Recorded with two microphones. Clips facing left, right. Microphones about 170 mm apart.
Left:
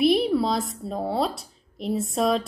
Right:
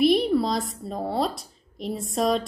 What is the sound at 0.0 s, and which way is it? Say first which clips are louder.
A woman's voice: even; centre (ahead or behind).